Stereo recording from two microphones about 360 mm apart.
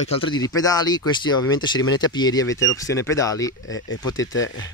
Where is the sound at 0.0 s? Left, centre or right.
Centre.